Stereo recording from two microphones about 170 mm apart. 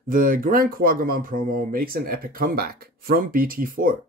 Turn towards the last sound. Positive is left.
turn(degrees=-55)  # may be behind; listen again after turning